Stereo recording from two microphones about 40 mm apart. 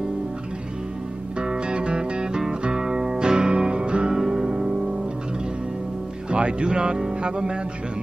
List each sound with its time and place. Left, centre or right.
1.4 s music: right
6.3 s speech: right